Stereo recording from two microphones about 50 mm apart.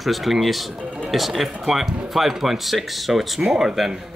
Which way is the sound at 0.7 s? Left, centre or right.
Right.